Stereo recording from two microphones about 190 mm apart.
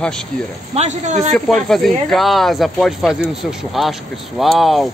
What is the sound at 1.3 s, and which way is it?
Speech, centre (ahead or behind).